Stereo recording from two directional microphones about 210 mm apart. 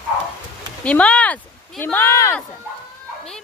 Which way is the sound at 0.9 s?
5° left (ahead or behind).